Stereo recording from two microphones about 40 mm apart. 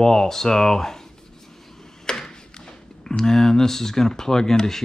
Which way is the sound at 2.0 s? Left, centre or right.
Centre.